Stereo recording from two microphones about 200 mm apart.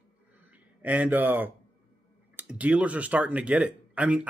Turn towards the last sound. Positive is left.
turn(degrees=-5)  # may be behind; listen again after turning